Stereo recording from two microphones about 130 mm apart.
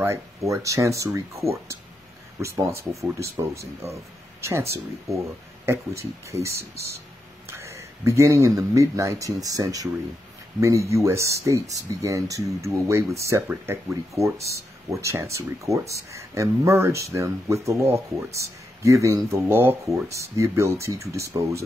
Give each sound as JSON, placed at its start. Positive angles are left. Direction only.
{"t": 0.0, "sound": "speech", "side_deg": -20}
{"t": 7.4, "sound": "speech", "side_deg": -20}